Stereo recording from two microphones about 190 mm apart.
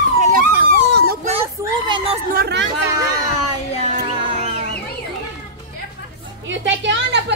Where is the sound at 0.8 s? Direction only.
65° right (ahead or behind).